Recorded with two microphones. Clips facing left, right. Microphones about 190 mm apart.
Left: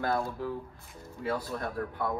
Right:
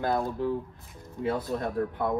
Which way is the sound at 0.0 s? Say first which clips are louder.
Right 3 dB; 20° right (ahead or behind).